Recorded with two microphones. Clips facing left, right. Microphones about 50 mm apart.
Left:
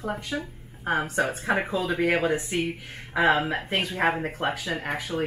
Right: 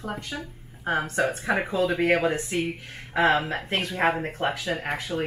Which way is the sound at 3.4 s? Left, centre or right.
Left.